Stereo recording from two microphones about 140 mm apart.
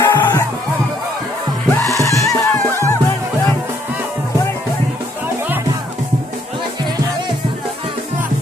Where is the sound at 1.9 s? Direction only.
20° left (ahead or behind).